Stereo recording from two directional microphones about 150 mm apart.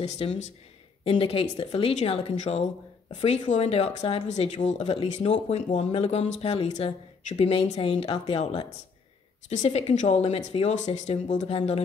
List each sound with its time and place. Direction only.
0.0 s speech: 45° left (ahead or behind)